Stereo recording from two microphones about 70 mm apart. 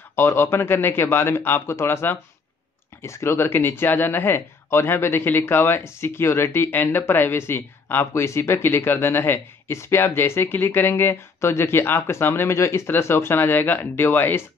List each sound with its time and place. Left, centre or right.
0.1 s speech: left